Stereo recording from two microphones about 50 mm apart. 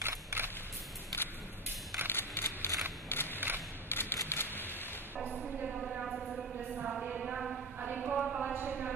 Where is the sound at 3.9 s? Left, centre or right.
Left.